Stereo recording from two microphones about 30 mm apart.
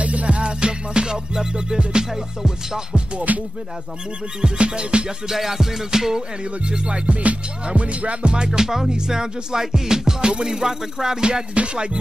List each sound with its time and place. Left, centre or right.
0.0 s music: right
0.4 s music: right
1.5 s music: right
3.2 s music: right
4.6 s music: right
5.3 s music: centre
6.4 s speech: right
7.7 s music: right
8.4 s music: right
11.1 s music: right
11.5 s speech: right